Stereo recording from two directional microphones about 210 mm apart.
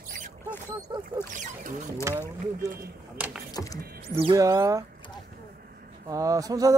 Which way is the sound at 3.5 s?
15° left (ahead or behind).